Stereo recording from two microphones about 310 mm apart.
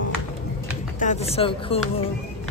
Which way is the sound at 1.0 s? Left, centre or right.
Left.